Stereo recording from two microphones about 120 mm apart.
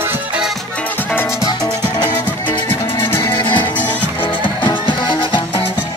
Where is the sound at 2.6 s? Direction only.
20° left (ahead or behind).